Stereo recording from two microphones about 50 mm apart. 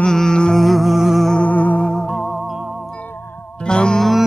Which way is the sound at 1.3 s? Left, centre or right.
Left.